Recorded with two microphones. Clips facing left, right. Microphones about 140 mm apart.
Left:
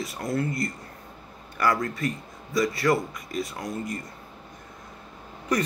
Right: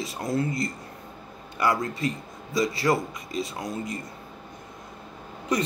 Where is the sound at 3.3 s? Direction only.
55° left (ahead or behind).